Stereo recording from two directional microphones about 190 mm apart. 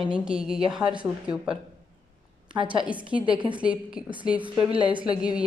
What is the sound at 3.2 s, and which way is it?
A woman's voice, 25° right (ahead or behind).